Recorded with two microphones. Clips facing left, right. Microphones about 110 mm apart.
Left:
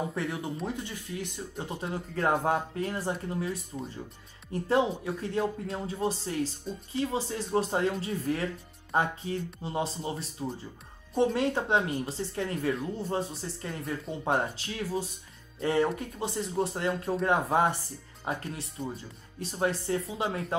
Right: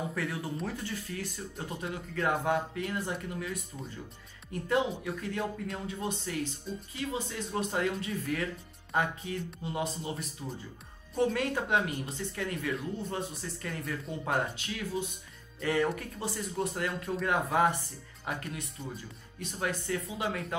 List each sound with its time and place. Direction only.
0.1 s speech: 25° left (ahead or behind)
1.9 s speech: 35° left (ahead or behind)